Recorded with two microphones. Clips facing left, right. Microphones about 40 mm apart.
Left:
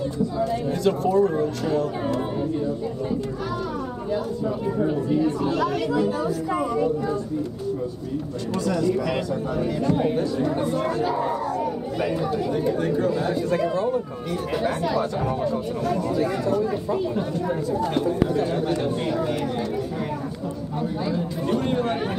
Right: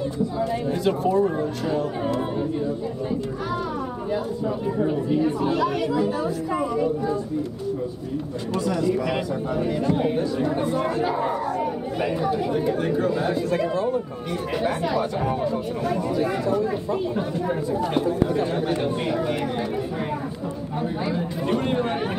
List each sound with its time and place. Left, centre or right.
0.4 s a man's voice: centre
4.7 s a man's voice: centre
8.6 s a man's voice: centre
21.0 s speech: right